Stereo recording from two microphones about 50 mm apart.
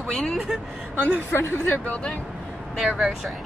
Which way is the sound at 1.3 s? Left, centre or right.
Left.